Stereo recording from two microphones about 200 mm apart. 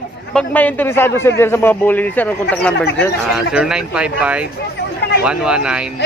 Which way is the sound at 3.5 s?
5° right (ahead or behind).